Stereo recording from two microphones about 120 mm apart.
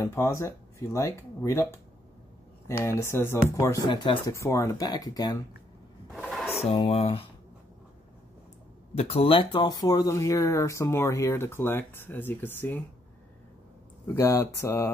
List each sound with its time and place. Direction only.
0.0 s speech: 25° left (ahead or behind)
2.8 s speech: 25° left (ahead or behind)
3.9 s speech: 45° left (ahead or behind)
4.3 s speech: 25° left (ahead or behind)
6.1 s a sound: 5° right (ahead or behind)
6.5 s a sound: 55° left (ahead or behind)
6.9 s speech: 55° left (ahead or behind)
8.9 s speech: 55° left (ahead or behind); by 12.8 s 15° left (ahead or behind)
14.0 s speech: 25° left (ahead or behind)